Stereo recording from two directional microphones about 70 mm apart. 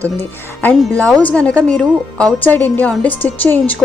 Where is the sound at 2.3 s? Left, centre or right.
Left.